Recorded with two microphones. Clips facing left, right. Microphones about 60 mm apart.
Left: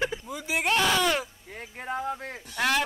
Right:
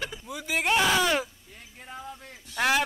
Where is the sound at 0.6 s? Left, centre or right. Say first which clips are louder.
Right 1 dB; centre.